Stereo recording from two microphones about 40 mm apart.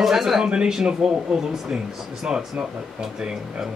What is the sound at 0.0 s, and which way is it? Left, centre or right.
A man's voice, centre.